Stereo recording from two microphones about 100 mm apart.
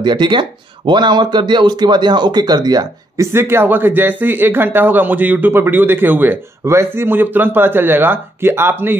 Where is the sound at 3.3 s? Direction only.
25° right (ahead or behind).